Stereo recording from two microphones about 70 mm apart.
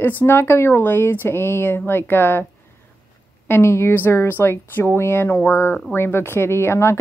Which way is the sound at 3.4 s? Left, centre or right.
Left.